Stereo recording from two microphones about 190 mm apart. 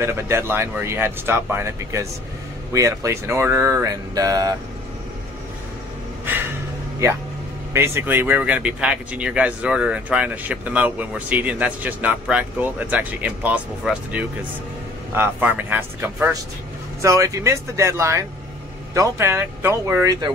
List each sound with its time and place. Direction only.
0.0 s speech: 15° right (ahead or behind)
7.0 s speech: 15° right (ahead or behind)